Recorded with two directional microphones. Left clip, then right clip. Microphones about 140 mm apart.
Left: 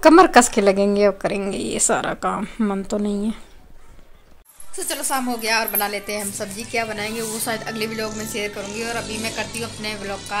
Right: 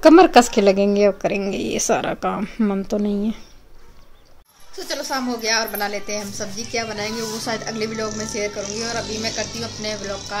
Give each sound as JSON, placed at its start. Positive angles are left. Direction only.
{"t": 0.0, "sound": "a woman's voice", "side_deg": -10}
{"t": 4.7, "sound": "a woman's voice", "side_deg": 0}